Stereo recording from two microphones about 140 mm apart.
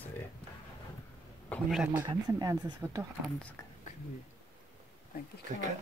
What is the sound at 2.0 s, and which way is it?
Speech, 30° right (ahead or behind).